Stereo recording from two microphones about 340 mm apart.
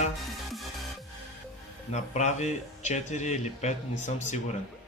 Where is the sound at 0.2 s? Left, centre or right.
Centre.